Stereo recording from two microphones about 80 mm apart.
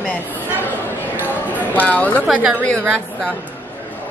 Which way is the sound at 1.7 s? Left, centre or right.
Centre.